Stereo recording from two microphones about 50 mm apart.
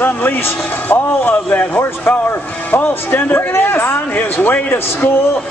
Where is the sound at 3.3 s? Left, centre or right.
Left.